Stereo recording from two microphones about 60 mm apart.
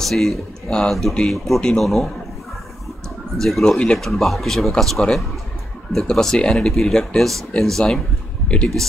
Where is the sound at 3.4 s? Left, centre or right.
Centre.